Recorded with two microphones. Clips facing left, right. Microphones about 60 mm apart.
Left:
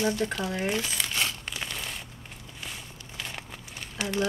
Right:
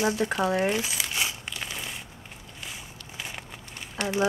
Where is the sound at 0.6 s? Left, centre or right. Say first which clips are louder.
Right 2 dB; centre.